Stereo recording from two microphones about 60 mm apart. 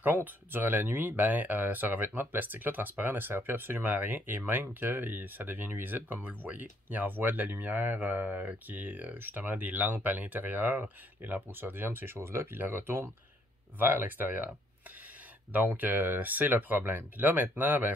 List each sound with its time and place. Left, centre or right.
0.0 s speech: right
15.5 s speech: right